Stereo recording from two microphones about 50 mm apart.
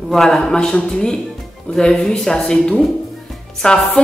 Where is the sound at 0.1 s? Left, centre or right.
Centre.